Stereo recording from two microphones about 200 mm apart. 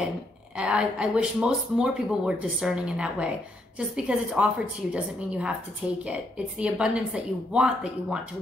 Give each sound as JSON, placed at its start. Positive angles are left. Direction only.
{"t": 0.6, "sound": "speech", "side_deg": -5}